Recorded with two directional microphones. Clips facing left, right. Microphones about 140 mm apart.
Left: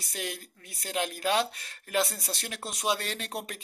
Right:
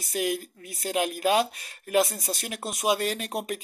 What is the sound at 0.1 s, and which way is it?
Speech, 15° right (ahead or behind).